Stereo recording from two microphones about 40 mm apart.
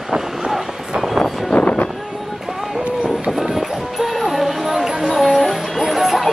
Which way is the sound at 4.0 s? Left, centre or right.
Centre.